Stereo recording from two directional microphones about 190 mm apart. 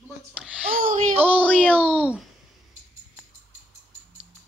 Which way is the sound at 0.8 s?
45° right (ahead or behind).